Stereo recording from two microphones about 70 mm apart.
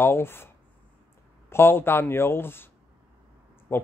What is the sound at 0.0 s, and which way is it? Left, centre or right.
Speech, left.